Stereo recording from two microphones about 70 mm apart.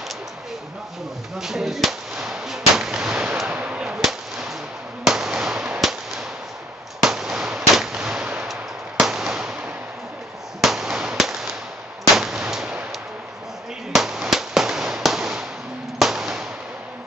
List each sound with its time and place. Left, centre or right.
1.4 s firecracker: centre
3.4 s a sound: centre
4.0 s whip: centre
5.0 s fireworks: centre
7.0 s firecracker: centre
8.5 s a sound: centre
10.6 s firecracker: centre
12.2 s gunshot: centre
13.9 s firecracker: centre
16.0 s a sound: centre